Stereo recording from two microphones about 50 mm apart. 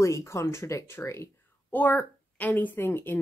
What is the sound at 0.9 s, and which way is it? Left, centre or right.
Speech, left.